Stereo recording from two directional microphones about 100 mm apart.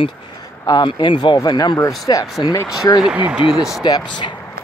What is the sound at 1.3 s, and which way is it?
Speech, 45° left (ahead or behind).